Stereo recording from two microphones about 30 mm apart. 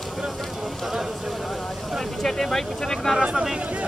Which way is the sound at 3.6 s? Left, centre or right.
Right.